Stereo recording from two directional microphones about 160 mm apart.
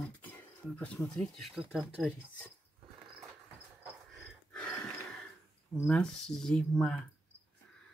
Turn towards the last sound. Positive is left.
turn(degrees=5)  # may be behind; listen again after turning